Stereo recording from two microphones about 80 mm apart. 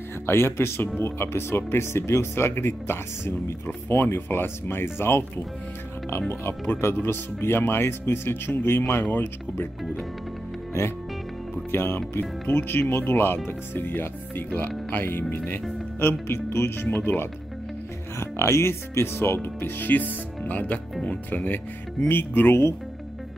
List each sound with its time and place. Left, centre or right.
0.3 s speech: left
11.7 s speech: left